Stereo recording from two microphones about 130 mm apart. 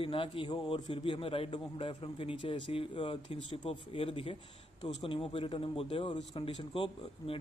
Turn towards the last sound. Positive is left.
turn(degrees=40)  # may be behind; listen again after turning